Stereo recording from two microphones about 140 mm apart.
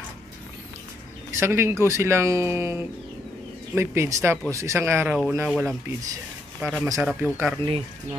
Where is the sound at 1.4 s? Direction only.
20° right (ahead or behind).